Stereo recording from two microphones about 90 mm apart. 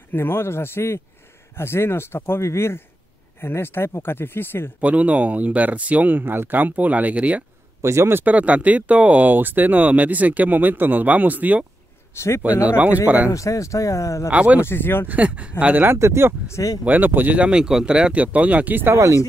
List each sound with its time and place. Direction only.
0.1 s speech: 25° left (ahead or behind)
4.7 s speech: 15° right (ahead or behind)
7.8 s speech: 30° right (ahead or behind)
12.1 s speech: 30° left (ahead or behind)
12.6 s speech: 15° right (ahead or behind)
13.3 s speech: 35° left (ahead or behind)
14.3 s speech: 15° right (ahead or behind)
14.6 s speech: 25° left (ahead or behind)
15.0 s speech: 15° right (ahead or behind)
16.4 s speech: 35° left (ahead or behind)
16.8 s speech: 20° right (ahead or behind)
18.9 s speech: 35° right (ahead or behind)